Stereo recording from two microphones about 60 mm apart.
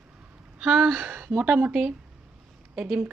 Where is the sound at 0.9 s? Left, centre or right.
Right.